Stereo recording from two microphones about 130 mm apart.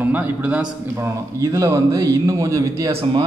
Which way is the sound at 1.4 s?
25° right (ahead or behind).